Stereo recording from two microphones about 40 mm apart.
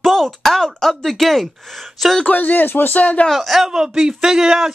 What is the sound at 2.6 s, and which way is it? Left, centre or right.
Speech, left.